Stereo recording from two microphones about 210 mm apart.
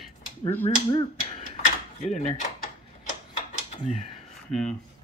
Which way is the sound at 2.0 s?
35° left (ahead or behind).